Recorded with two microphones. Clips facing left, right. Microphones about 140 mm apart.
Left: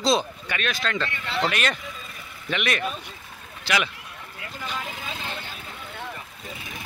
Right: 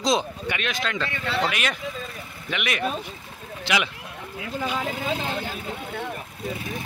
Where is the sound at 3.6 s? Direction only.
20° right (ahead or behind).